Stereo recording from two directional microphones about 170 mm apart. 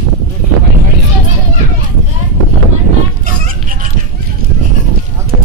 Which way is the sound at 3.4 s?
50° right (ahead or behind).